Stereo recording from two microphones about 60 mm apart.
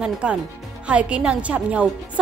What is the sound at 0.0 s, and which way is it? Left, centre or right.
Speech, centre.